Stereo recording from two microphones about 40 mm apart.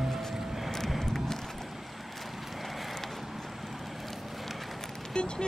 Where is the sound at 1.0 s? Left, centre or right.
Centre.